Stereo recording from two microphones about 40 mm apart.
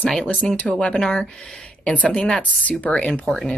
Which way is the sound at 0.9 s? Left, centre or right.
Centre.